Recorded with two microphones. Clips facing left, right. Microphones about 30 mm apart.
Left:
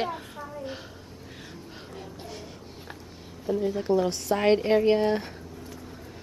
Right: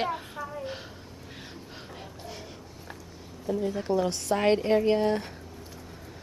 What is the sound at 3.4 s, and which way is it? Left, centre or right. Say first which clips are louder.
A woman's voice: left 3 dB; centre.